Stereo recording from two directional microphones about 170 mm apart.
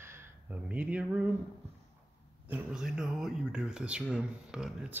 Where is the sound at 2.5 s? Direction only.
5° right (ahead or behind).